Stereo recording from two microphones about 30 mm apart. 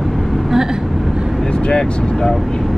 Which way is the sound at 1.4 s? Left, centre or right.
Left.